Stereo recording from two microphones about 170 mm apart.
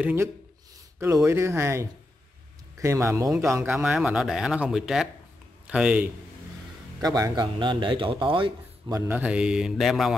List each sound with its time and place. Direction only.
0.0 s speech: 15° right (ahead or behind)
3.7 s speech: 5° right (ahead or behind)
7.0 s a man's voice: 20° right (ahead or behind)
9.0 s speech: 10° right (ahead or behind)